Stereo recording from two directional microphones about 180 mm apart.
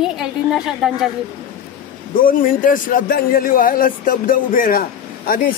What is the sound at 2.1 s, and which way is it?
A man's voice, 50° left (ahead or behind).